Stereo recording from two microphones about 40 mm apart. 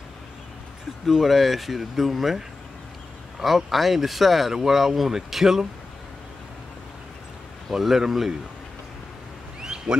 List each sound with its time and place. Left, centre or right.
1.0 s speech: centre
3.4 s speech: centre
7.7 s a man's voice: centre
9.6 s a sound: centre